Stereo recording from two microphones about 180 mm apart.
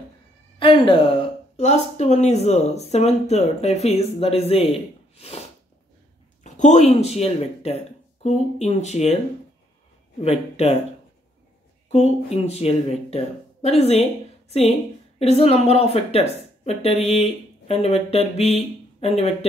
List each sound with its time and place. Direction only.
0.6 s a sound: 30° left (ahead or behind)
1.6 s speech: 40° left (ahead or behind)
5.1 s snort: 35° left (ahead or behind)
6.4 s speech: 40° left (ahead or behind)
10.2 s speech: 35° left (ahead or behind)
11.9 s speech: 35° left (ahead or behind)